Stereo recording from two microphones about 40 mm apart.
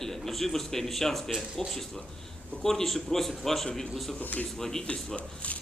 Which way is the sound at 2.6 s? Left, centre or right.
Centre.